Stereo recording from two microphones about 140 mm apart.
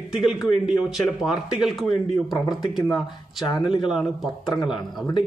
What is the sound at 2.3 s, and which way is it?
Speech, 30° left (ahead or behind).